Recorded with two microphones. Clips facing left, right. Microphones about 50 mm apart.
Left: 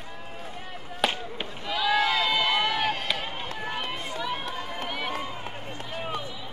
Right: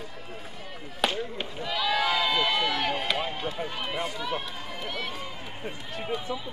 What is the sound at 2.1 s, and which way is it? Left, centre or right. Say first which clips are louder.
Run: left 1 dB; centre.